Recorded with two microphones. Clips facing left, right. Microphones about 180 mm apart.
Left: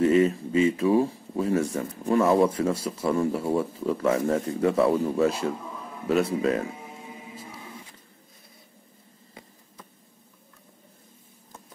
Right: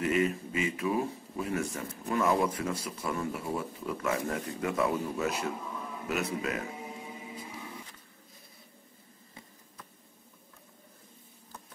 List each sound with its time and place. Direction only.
0.0 s speech: 30° left (ahead or behind)